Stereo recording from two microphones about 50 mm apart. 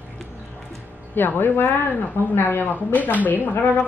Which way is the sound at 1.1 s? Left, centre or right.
Left.